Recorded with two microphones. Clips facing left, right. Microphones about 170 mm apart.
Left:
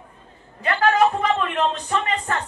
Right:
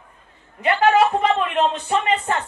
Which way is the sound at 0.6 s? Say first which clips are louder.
Right 2 dB; 20° right (ahead or behind).